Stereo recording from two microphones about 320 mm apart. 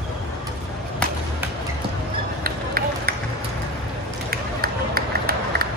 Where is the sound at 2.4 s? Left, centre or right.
Right.